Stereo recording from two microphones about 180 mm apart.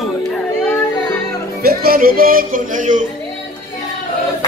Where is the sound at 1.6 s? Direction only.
55° right (ahead or behind).